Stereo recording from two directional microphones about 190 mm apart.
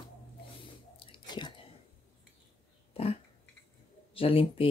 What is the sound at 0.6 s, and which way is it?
Biting, 25° left (ahead or behind).